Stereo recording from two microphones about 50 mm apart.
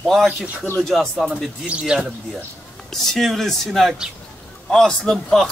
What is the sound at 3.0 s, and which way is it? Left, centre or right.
A man's voice, centre.